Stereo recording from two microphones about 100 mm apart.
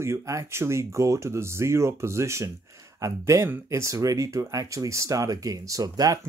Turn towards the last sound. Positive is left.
turn(degrees=-35)  # may be behind; listen again after turning